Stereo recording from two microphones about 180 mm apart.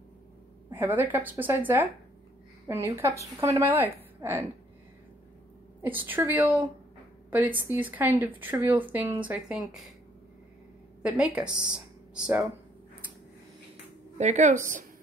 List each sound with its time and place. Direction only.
0.7 s speech: 10° right (ahead or behind)
5.8 s speech: 10° right (ahead or behind)
11.0 s a woman's voice: 5° right (ahead or behind)
14.1 s a woman's voice: 40° right (ahead or behind)